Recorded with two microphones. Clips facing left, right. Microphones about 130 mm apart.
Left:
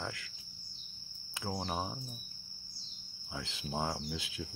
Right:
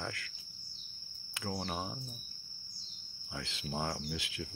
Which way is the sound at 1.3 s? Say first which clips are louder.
Left 1 dB; 20° left (ahead or behind).